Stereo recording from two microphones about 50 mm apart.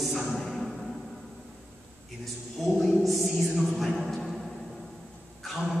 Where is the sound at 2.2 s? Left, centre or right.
Centre.